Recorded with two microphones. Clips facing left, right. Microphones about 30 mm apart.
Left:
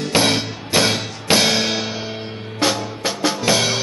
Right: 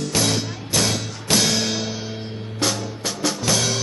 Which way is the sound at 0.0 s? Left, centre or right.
Left.